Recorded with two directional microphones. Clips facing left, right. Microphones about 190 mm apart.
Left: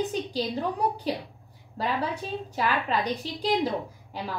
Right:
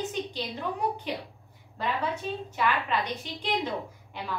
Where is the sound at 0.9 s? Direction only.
35° left (ahead or behind).